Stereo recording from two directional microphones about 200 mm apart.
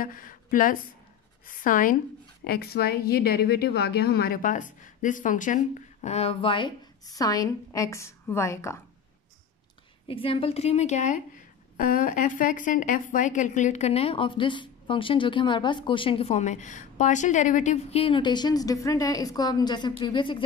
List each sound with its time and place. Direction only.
0.0 s a woman's voice: 45° left (ahead or behind); by 8.8 s 15° left (ahead or behind)
10.0 s a woman's voice: 30° left (ahead or behind)